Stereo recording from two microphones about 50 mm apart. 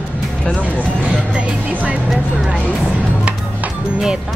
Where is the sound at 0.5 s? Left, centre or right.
Left.